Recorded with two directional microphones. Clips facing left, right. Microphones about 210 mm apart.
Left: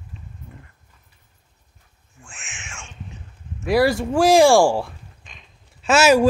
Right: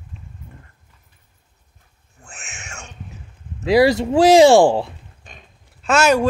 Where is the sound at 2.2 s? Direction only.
40° right (ahead or behind).